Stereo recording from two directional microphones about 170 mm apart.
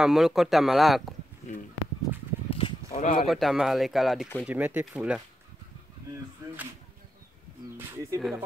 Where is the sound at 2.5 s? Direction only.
35° left (ahead or behind).